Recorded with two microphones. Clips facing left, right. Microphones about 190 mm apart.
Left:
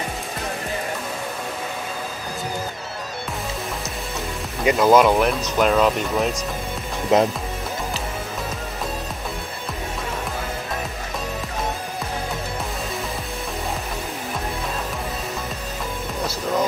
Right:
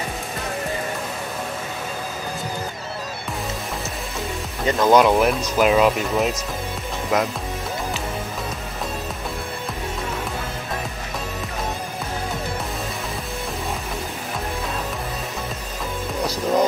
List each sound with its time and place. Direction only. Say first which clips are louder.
4.6 s speech: left 1 dB; 5° left (ahead or behind)
7.1 s speech: left 5 dB; 25° left (ahead or behind)